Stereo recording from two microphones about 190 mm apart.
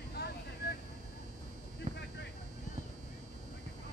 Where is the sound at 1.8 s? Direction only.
35° right (ahead or behind).